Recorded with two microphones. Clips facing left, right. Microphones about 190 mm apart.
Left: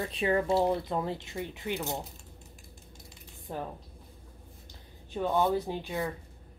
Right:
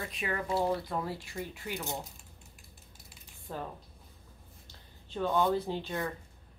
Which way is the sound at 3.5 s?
20° left (ahead or behind).